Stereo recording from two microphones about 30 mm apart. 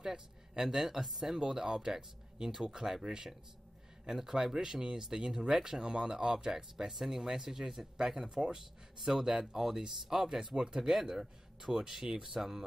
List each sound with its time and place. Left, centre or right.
0.0 s a man's voice: centre
1.4 s speech: right
8.4 s speech: right
9.0 s speech: centre